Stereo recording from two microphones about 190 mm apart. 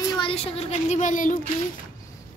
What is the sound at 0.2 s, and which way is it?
Speech, 30° left (ahead or behind).